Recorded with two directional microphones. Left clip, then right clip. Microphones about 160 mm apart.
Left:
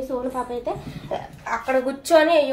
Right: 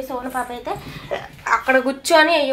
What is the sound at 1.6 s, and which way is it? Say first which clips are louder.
Speech: right 1 dB; 20° right (ahead or behind).